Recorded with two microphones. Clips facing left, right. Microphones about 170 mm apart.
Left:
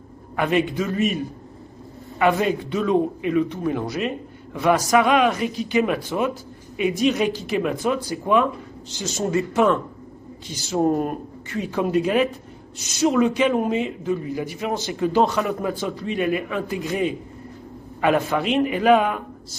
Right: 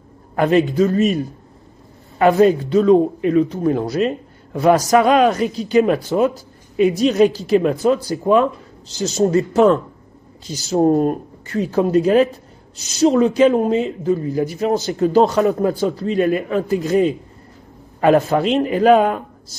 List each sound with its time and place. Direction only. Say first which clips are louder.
0.4 s speech: right 7 dB; 35° right (ahead or behind)
2.1 s speech: right 7 dB; 40° right (ahead or behind)